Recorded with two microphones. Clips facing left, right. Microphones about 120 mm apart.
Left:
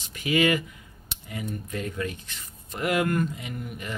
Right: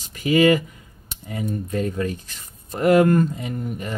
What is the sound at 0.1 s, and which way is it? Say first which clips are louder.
Speech: right 7 dB; 40° right (ahead or behind).